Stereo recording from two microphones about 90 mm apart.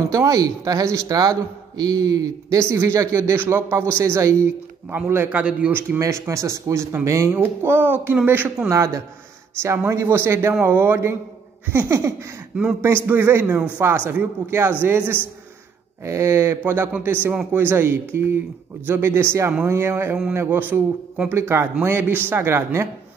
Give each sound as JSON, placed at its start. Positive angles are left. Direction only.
{"t": 0.1, "sound": "a man's voice", "side_deg": -40}
{"t": 5.4, "sound": "a man's voice", "side_deg": -15}
{"t": 5.9, "sound": "a man's voice", "side_deg": -35}
{"t": 8.6, "sound": "a man's voice", "side_deg": -35}